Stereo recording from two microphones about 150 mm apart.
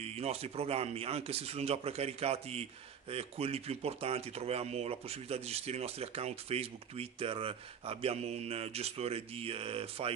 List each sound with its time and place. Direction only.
0.0 s speech: 45° right (ahead or behind)